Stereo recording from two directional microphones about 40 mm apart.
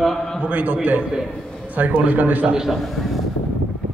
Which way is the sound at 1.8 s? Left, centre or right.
Right.